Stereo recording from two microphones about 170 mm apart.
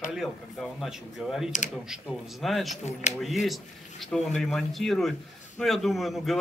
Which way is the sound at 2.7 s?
45° left (ahead or behind).